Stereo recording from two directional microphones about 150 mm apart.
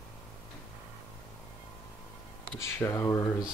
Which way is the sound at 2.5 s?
20° left (ahead or behind).